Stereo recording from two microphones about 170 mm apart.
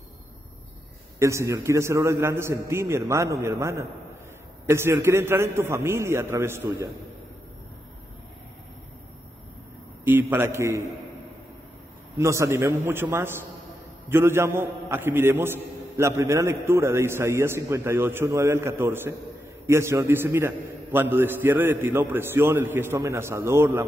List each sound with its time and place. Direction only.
1.2 s a man's voice: 15° right (ahead or behind)
10.0 s a man's voice: 10° right (ahead or behind)
12.2 s a man's voice: 15° right (ahead or behind)